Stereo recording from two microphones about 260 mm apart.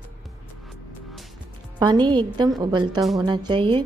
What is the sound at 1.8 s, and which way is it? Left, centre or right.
Speech, centre.